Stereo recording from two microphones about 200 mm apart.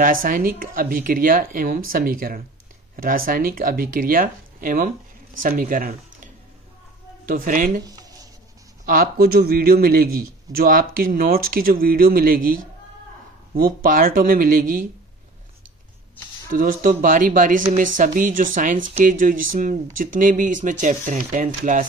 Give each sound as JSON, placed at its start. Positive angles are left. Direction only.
{"t": 0.0, "sound": "speech", "side_deg": -45}
{"t": 7.8, "sound": "writing", "side_deg": -20}
{"t": 8.8, "sound": "speech", "side_deg": -45}
{"t": 16.5, "sound": "speech", "side_deg": -45}